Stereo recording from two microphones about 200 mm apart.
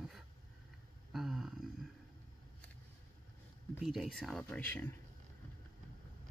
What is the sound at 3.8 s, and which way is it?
Speech, centre (ahead or behind).